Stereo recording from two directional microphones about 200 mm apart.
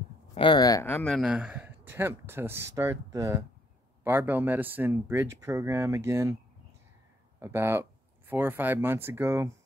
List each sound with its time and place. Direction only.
0.3 s speech: 25° left (ahead or behind)
1.1 s speech: 5° right (ahead or behind)
7.3 s speech: 15° right (ahead or behind)